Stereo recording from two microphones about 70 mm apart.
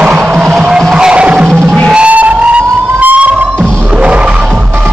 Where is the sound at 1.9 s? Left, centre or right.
Centre.